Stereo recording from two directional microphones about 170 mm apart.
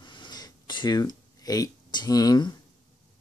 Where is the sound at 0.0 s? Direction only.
25° left (ahead or behind).